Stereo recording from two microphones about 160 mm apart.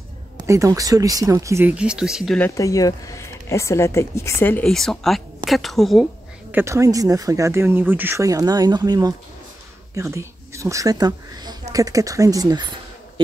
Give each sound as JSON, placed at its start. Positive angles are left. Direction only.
{"t": 0.4, "sound": "speech", "side_deg": -20}
{"t": 2.3, "sound": "speech", "side_deg": 15}
{"t": 4.6, "sound": "speech", "side_deg": 0}
{"t": 6.5, "sound": "speech", "side_deg": -20}